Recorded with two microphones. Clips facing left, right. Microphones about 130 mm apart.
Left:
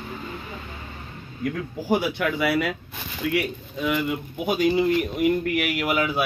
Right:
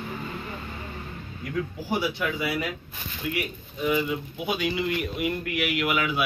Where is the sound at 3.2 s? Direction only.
85° left.